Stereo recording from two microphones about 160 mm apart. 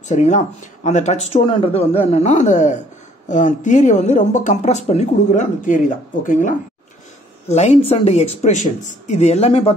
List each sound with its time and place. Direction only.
0.1 s speech: 50° left (ahead or behind)
7.4 s speech: 40° left (ahead or behind)